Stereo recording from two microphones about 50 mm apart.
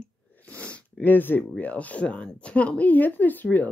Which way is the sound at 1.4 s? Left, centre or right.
Left.